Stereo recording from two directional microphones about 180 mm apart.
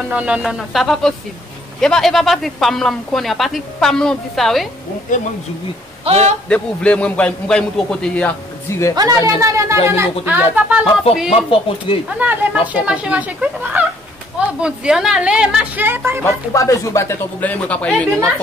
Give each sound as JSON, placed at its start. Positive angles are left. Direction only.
{"t": 0.1, "sound": "speech", "side_deg": -5}
{"t": 5.1, "sound": "speech", "side_deg": 45}
{"t": 6.0, "sound": "a man's voice", "side_deg": -35}
{"t": 6.5, "sound": "a man's voice", "side_deg": 5}
{"t": 9.4, "sound": "speech", "side_deg": -15}
{"t": 11.2, "sound": "speech", "side_deg": 30}
{"t": 12.2, "sound": "speech", "side_deg": -10}
{"t": 16.5, "sound": "a man's voice", "side_deg": 20}